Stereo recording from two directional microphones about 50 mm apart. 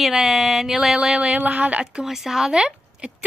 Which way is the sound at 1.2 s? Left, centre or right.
Right.